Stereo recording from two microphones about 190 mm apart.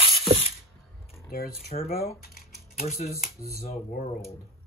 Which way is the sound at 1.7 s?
40° left (ahead or behind).